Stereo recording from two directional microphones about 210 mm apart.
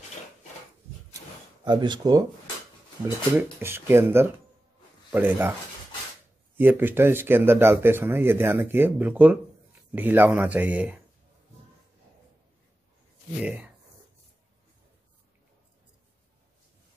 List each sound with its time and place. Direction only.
1.1 s a sound: 20° right (ahead or behind)
3.3 s speech: 10° right (ahead or behind)
13.4 s speech: 5° right (ahead or behind)